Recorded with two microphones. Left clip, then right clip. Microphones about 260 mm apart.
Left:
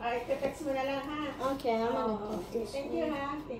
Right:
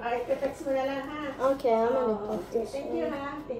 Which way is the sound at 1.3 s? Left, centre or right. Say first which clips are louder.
Right 8 dB; centre.